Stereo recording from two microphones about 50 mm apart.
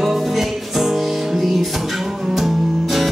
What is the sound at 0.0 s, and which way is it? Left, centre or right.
Music, centre.